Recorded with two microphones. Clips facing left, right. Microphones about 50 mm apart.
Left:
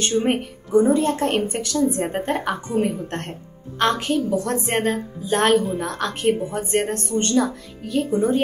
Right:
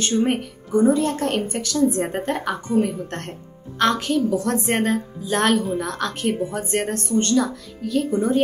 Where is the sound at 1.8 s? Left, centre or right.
Centre.